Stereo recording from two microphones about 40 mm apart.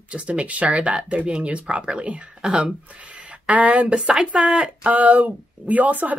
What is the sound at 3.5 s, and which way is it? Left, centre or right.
Speech, right.